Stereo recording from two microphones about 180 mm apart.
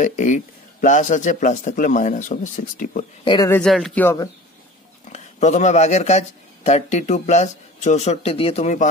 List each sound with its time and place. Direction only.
0.0 s speech: 45° left (ahead or behind)
3.3 s speech: 20° left (ahead or behind)
3.5 s speech: centre (ahead or behind)
5.1 s speech: 40° left (ahead or behind)